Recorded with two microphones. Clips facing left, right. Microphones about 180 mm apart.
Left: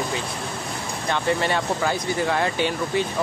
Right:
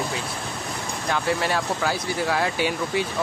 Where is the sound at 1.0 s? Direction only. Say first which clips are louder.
Left 1 dB; 5° right (ahead or behind).